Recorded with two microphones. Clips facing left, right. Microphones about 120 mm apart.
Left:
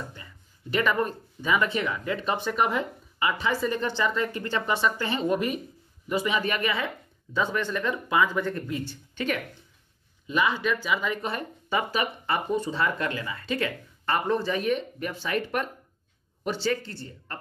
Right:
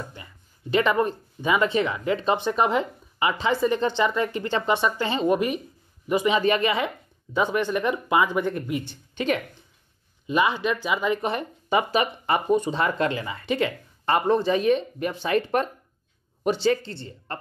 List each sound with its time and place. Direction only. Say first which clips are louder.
0.1 s speech: right 3 dB; 20° right (ahead or behind)